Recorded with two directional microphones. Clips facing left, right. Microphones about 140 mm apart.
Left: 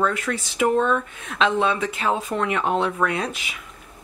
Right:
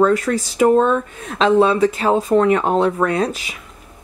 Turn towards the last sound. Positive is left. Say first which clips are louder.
# right 6 dB
turn(degrees=-40)  # may be behind; listen again after turning